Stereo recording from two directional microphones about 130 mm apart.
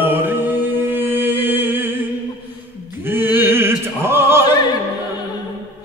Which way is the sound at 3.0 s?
15° right (ahead or behind).